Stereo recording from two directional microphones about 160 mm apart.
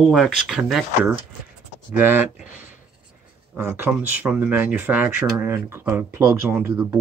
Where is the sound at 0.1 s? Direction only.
Centre (ahead or behind).